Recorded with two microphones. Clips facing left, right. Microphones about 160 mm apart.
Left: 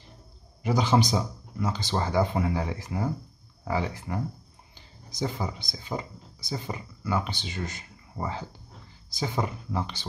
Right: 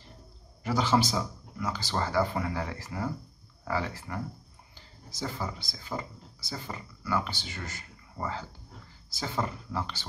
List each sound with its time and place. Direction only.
0.7 s speech: 15° left (ahead or behind)